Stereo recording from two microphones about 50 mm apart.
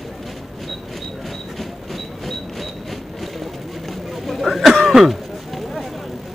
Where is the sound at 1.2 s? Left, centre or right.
Centre.